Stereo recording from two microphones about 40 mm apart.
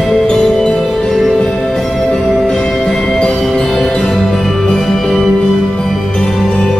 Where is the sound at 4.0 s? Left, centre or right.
Centre.